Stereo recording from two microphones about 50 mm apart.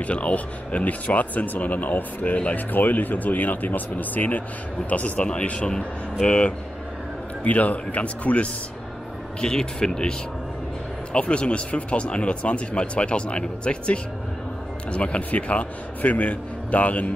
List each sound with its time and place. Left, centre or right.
0.0 s speech: left
11.1 s speech: left